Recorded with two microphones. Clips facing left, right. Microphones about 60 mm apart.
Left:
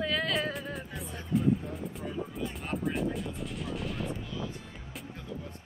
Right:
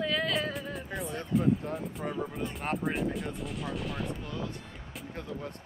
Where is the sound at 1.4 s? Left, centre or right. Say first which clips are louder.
Even; right.